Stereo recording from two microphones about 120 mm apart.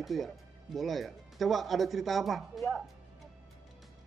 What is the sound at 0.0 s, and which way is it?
Speech, centre (ahead or behind).